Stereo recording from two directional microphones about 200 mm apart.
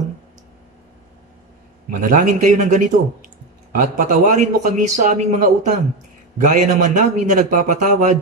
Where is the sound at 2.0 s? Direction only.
40° right (ahead or behind).